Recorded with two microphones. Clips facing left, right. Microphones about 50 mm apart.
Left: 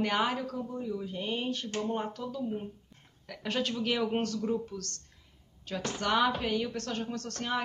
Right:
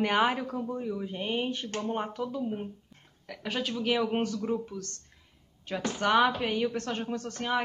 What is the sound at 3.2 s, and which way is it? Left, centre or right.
A man's voice, centre.